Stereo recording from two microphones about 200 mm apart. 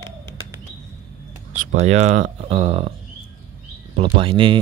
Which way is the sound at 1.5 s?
35° right (ahead or behind).